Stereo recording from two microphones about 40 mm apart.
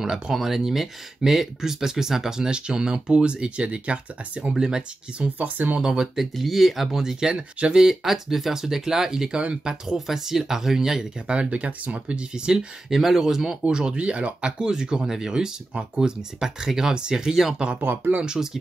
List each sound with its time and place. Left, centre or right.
0.3 s speech: centre; by 4.0 s right
4.4 s speech: centre
5.4 s speech: right
5.8 s speech: centre
6.3 s speech: centre
7.8 s speech: centre
9.3 s speech: right
9.8 s speech: centre
11.2 s speech: right
12.5 s speech: centre
14.0 s speech: right; by 17.6 s centre
17.7 s speech: right
18.2 s speech: centre